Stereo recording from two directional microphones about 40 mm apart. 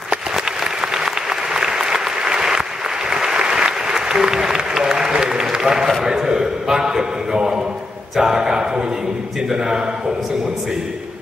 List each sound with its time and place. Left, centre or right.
0.7 s applause: centre
6.0 s a man's voice: centre